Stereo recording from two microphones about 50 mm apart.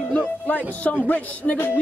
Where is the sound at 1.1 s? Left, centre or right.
Left.